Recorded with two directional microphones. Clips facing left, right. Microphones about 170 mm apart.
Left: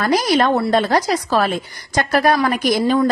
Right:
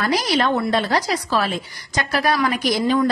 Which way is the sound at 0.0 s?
45° left (ahead or behind).